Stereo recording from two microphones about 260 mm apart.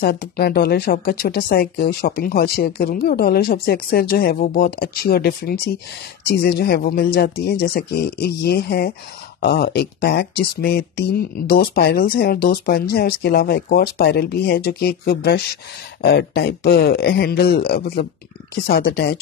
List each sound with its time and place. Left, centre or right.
0.0 s speech: left